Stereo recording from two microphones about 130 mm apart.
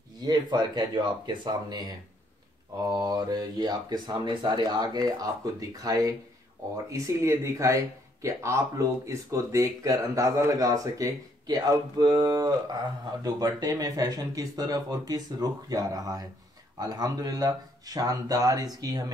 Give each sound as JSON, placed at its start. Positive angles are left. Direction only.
{"t": 0.2, "sound": "speech", "side_deg": -35}